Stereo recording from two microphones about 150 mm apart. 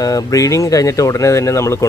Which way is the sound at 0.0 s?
25° left (ahead or behind).